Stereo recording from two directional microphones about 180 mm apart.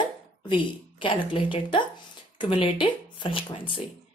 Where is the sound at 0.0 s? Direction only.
25° left (ahead or behind).